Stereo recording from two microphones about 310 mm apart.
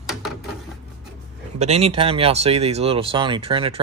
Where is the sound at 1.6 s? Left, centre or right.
Centre.